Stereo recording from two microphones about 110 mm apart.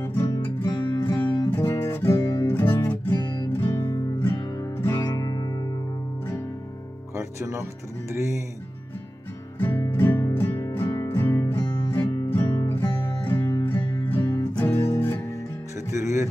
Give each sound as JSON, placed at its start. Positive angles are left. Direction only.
{"t": 0.0, "sound": "music", "side_deg": 20}
{"t": 0.7, "sound": "music", "side_deg": 40}
{"t": 1.5, "sound": "music", "side_deg": 20}
{"t": 4.4, "sound": "music", "side_deg": 40}
{"t": 4.7, "sound": "music", "side_deg": 25}
{"t": 7.2, "sound": "music", "side_deg": -25}
{"t": 9.7, "sound": "music", "side_deg": 20}
{"t": 15.9, "sound": "music", "side_deg": -30}